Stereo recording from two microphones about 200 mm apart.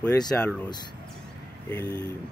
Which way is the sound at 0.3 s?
10° left (ahead or behind).